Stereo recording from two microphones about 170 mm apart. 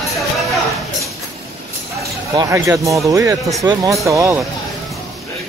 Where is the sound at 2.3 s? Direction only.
20° right (ahead or behind).